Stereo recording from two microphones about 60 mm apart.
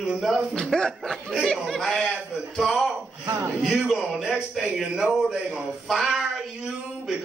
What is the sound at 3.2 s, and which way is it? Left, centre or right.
Speech, right.